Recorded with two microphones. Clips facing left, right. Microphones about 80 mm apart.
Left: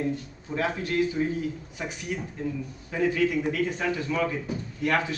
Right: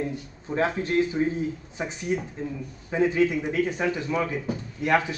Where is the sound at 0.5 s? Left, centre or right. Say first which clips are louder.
Right 3 dB; right.